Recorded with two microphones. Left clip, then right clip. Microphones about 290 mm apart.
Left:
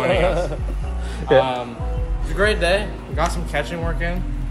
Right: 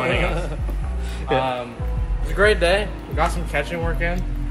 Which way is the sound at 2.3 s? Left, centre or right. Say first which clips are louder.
Right 1 dB; centre.